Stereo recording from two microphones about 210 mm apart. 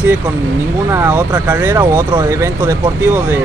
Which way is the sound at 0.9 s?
10° right (ahead or behind).